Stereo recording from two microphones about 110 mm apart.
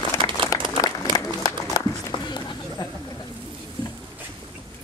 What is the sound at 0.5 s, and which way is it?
Applause, 30° left (ahead or behind).